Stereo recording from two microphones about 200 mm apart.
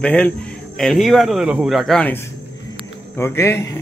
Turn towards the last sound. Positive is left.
turn(degrees=10)  # may be behind; listen again after turning